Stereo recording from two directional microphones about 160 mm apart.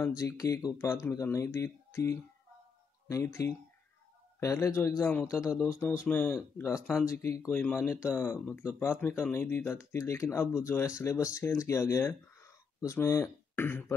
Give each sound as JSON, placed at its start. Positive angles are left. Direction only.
{"t": 0.0, "sound": "speech", "side_deg": 20}